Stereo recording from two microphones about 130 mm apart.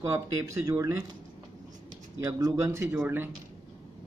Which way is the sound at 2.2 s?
25° right (ahead or behind).